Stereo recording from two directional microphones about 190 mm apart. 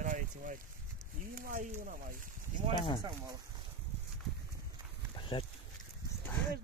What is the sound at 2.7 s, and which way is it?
Speech, 25° left (ahead or behind).